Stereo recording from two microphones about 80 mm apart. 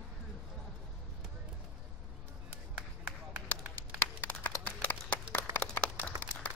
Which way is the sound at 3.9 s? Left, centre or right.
Left.